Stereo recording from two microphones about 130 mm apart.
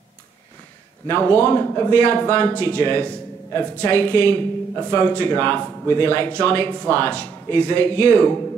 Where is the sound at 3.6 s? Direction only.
15° left (ahead or behind).